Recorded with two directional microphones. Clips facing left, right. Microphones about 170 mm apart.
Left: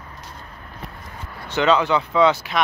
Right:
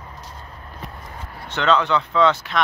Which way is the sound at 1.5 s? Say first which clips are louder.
Left 1 dB; 5° left (ahead or behind).